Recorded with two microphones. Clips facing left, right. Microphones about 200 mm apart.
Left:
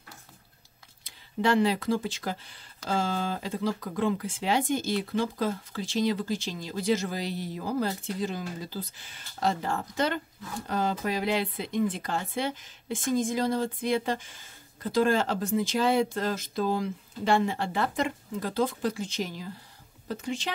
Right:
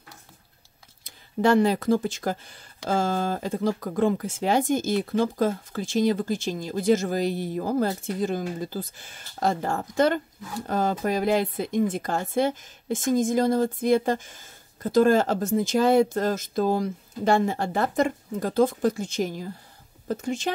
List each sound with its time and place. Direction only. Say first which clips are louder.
1.0 s speech: right 5 dB; 45° right (ahead or behind)